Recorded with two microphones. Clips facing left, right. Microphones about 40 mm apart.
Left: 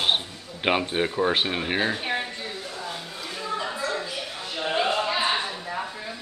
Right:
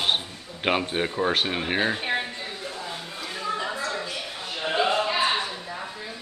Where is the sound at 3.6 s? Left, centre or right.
Centre.